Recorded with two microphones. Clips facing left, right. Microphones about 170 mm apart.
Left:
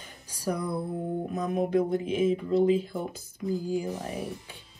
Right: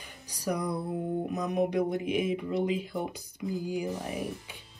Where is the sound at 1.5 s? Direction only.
15° right (ahead or behind).